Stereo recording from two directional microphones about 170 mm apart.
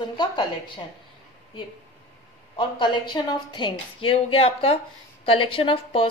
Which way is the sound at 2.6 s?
25° left (ahead or behind).